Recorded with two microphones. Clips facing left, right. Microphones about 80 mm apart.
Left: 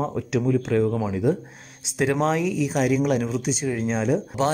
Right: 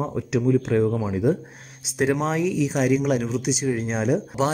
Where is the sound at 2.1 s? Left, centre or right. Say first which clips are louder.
Left 3 dB; centre.